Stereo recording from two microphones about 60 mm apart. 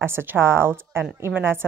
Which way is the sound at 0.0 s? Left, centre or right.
Right.